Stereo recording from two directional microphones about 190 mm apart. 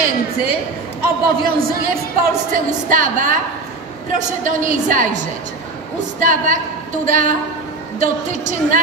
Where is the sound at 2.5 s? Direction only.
45° right (ahead or behind).